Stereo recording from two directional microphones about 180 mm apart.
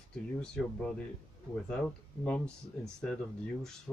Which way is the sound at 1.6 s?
5° left (ahead or behind).